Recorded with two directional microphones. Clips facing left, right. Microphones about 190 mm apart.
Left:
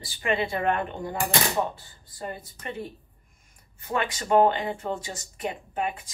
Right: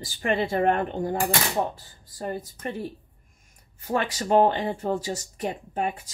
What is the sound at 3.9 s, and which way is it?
Speech, 40° right (ahead or behind).